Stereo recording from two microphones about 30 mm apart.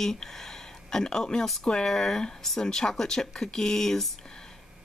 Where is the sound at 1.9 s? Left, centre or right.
Centre.